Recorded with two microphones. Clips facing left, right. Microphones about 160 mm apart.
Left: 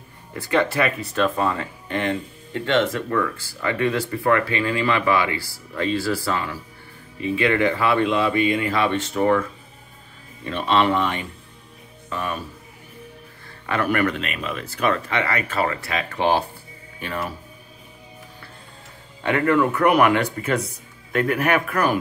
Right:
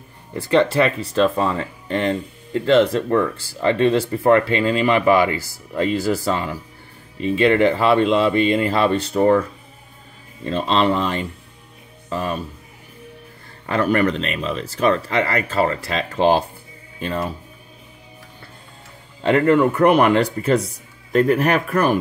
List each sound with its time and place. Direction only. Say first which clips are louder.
0.5 s speech: right 4 dB; 25° right (ahead or behind)
10.4 s speech: right 1 dB; 30° right (ahead or behind)
13.7 s speech: right 3 dB; 30° right (ahead or behind)
19.4 s speech: right 3 dB; 30° right (ahead or behind)